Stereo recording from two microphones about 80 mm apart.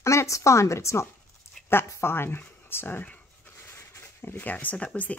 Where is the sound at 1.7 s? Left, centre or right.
Left.